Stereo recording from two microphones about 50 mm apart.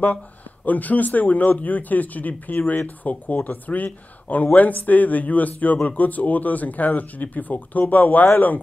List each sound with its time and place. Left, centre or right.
0.7 s speech: left